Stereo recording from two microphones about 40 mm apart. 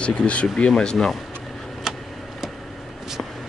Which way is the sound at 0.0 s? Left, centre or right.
Left.